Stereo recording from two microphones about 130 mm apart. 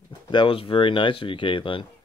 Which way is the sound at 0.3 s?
40° left (ahead or behind).